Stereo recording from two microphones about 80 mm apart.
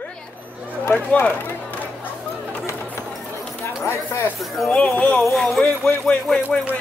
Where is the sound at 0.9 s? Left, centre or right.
Centre.